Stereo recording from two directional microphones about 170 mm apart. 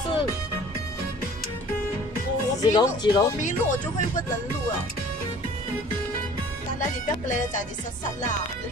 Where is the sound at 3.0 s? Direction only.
25° left (ahead or behind).